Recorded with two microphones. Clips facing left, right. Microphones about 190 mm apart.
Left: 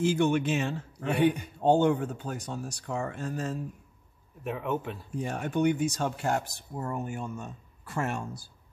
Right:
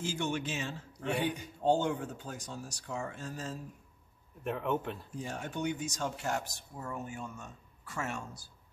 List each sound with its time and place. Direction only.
0.0 s a man's voice: 60° left (ahead or behind)
4.5 s speech: 5° left (ahead or behind)
5.1 s a man's voice: 60° left (ahead or behind)